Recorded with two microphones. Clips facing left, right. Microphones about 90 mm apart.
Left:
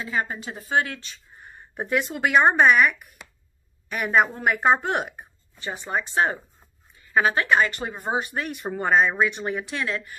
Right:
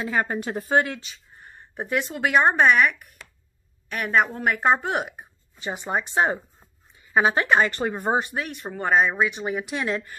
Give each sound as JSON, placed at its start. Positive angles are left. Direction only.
{"t": 0.3, "sound": "speech", "side_deg": -55}
{"t": 0.6, "sound": "speech", "side_deg": -40}
{"t": 1.0, "sound": "a woman's voice", "side_deg": 0}
{"t": 5.6, "sound": "speech", "side_deg": -20}
{"t": 7.7, "sound": "speech", "side_deg": -45}
{"t": 8.4, "sound": "a woman's voice", "side_deg": 5}
{"t": 9.7, "sound": "speech", "side_deg": -20}